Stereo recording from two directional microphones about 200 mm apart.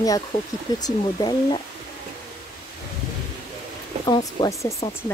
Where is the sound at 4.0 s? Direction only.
20° left (ahead or behind).